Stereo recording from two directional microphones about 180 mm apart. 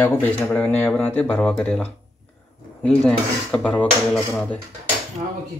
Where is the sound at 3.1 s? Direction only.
5° left (ahead or behind).